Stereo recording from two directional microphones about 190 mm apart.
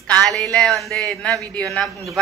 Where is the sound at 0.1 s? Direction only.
5° left (ahead or behind).